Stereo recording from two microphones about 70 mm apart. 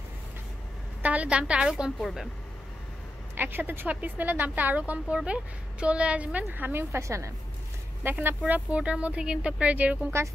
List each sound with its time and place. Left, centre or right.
1.0 s a woman's voice: centre
2.0 s speech: centre
3.3 s a woman's voice: right
8.0 s a woman's voice: right